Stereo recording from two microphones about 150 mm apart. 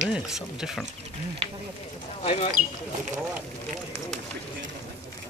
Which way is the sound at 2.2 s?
45° left (ahead or behind).